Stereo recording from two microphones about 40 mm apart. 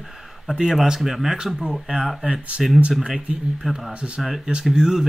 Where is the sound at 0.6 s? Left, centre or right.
Centre.